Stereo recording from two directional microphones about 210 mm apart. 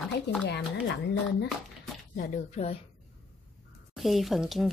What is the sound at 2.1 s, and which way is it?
Speech, 40° left (ahead or behind).